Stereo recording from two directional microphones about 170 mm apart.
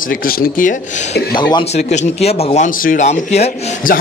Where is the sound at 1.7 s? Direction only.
40° left (ahead or behind).